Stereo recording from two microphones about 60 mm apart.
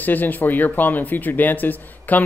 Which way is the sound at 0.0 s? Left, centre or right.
Left.